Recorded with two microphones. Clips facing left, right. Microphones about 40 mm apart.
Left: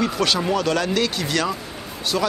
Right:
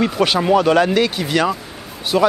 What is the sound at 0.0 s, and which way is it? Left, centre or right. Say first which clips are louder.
Speech: right 4 dB; centre.